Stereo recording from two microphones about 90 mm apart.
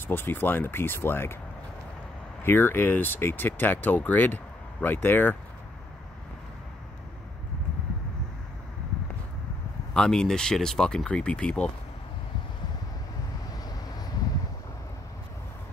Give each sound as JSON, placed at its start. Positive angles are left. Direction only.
{"t": 0.1, "sound": "speech", "side_deg": 25}
{"t": 2.4, "sound": "speech", "side_deg": 25}
{"t": 9.9, "sound": "speech", "side_deg": 10}